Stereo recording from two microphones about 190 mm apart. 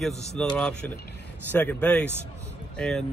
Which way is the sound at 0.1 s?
35° left (ahead or behind).